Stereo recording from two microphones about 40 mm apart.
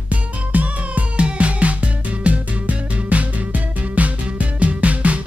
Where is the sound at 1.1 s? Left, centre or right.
Right.